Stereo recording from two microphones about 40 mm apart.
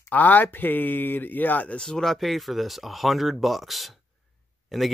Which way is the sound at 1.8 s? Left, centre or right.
Centre.